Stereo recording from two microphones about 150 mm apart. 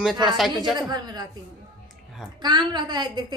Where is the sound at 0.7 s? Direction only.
25° right (ahead or behind).